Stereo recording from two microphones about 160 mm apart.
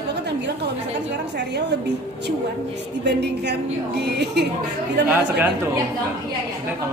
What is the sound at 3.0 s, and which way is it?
A woman's voice, 90° right.